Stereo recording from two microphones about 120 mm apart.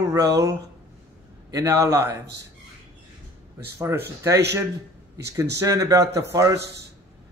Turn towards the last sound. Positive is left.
turn(degrees=-25)  # may be behind; listen again after turning